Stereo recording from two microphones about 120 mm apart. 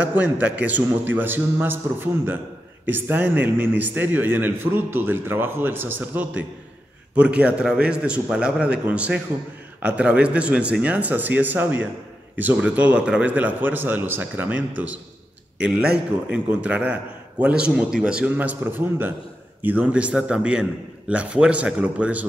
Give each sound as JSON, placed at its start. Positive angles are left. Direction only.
{"t": 0.0, "sound": "a man's voice", "side_deg": -15}